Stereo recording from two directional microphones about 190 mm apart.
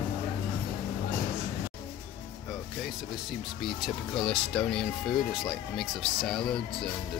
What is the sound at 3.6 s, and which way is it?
Speech, centre (ahead or behind).